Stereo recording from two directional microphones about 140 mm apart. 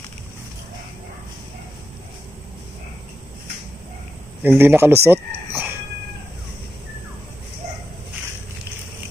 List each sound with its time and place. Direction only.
4.4 s speech: 15° right (ahead or behind)